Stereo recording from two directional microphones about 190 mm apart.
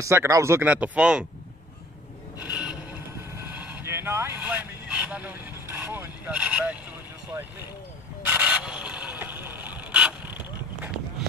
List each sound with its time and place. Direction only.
0.0 s speech: 15° right (ahead or behind)
2.5 s vehicle: 5° right (ahead or behind)
7.3 s speech: 15° right (ahead or behind)
8.3 s a sound: 5° right (ahead or behind)